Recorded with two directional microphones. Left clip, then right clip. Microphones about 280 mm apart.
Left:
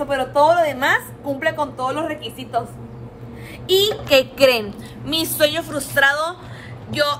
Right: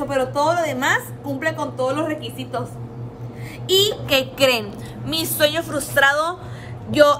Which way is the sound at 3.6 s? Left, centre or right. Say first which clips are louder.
Left 1 dB; centre.